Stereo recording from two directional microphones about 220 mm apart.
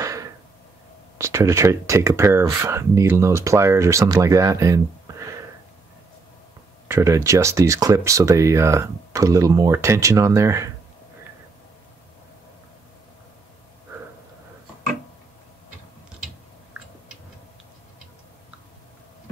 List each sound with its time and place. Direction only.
0.0 s a sound: 15° right (ahead or behind)
1.1 s speech: 15° right (ahead or behind)
6.9 s speech: 15° right (ahead or behind)